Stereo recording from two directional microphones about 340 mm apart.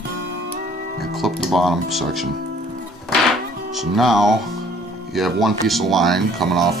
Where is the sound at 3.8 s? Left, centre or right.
Centre.